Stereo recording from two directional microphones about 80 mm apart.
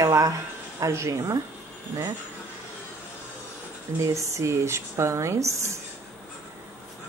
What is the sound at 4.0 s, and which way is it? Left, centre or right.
Speech, right.